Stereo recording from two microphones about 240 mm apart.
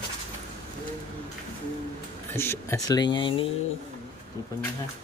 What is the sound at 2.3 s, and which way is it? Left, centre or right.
Speech, centre.